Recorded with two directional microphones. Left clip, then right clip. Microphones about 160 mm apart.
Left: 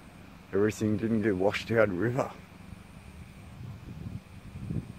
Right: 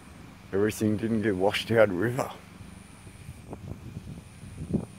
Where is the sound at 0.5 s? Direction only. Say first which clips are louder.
Right 1 dB; 20° right (ahead or behind).